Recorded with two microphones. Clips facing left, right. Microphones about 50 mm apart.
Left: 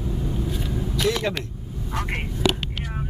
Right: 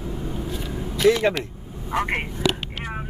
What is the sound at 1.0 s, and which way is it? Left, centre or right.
Vehicle, right.